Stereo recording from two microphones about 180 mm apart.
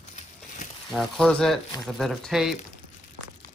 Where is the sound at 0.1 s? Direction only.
40° left (ahead or behind).